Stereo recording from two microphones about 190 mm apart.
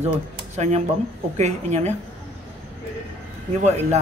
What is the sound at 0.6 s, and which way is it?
Speech, 35° right (ahead or behind).